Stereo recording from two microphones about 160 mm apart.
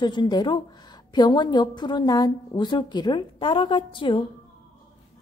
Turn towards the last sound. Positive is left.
turn(degrees=30)  # may be behind; listen again after turning